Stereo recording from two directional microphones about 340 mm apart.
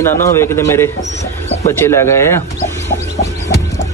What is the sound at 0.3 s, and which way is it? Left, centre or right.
Speech, centre.